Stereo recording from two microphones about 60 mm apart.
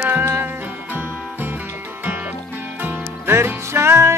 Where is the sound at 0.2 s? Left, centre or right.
Right.